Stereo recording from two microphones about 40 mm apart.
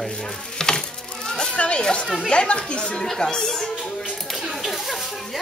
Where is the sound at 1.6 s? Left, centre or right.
Left; by 3.7 s centre.